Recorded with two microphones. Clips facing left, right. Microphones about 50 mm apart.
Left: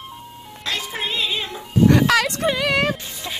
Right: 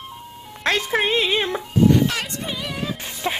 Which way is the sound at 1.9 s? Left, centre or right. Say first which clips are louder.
Left 3 dB; left.